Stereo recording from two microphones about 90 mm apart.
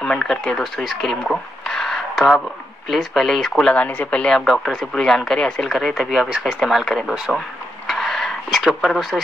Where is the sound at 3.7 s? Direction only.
15° left (ahead or behind); by 7.1 s centre (ahead or behind).